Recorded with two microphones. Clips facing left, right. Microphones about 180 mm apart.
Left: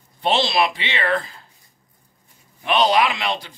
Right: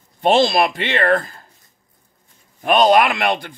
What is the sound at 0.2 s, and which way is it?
Speech, 45° right (ahead or behind).